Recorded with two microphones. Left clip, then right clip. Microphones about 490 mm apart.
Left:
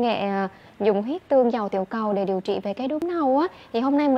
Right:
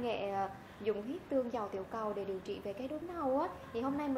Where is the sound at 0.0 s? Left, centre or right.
Left.